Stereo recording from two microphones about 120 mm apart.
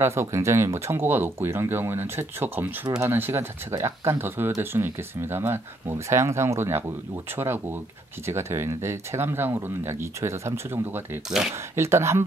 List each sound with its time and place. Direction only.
0.0 s speech: 20° right (ahead or behind)